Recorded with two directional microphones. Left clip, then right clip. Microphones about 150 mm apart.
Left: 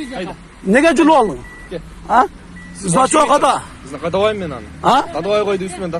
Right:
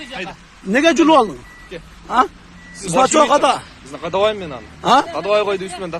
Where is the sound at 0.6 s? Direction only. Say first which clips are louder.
Left 2 dB; 5° right (ahead or behind).